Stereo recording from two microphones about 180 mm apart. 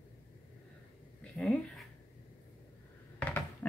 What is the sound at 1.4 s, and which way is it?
Speech, centre (ahead or behind).